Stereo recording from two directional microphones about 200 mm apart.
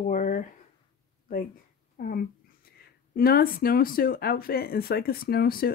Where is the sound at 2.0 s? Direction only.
45° left (ahead or behind).